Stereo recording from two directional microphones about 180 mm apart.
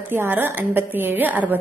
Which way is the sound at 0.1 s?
10° right (ahead or behind).